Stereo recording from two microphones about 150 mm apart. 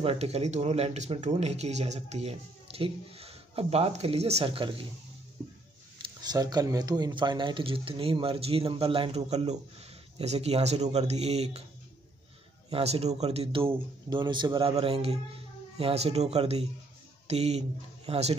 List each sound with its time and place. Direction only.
0.0 s speech: 40° right (ahead or behind)
6.0 s speech: 25° right (ahead or behind); by 11.6 s 45° right (ahead or behind)
12.6 s speech: 45° right (ahead or behind)